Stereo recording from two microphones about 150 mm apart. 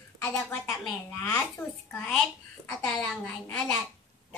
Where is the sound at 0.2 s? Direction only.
20° left (ahead or behind).